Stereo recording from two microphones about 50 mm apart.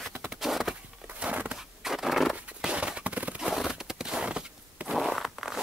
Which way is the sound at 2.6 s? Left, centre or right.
Right.